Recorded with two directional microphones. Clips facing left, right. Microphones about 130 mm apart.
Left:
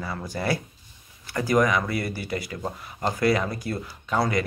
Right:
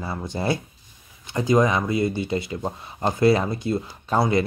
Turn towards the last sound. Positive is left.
turn(degrees=-25)  # may be behind; listen again after turning